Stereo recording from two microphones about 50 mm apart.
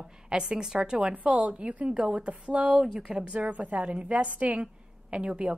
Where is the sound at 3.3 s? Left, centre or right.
Right.